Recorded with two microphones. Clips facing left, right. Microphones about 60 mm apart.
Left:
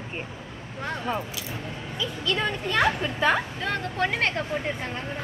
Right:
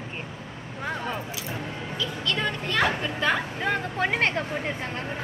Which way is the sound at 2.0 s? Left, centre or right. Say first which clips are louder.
Left 1 dB; centre.